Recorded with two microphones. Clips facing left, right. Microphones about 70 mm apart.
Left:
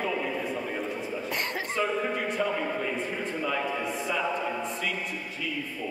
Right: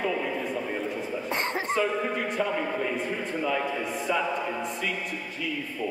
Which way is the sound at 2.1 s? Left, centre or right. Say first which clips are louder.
Right 1 dB; centre.